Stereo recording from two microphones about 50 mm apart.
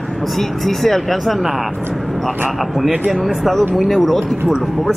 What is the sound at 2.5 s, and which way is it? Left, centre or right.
Speech, centre.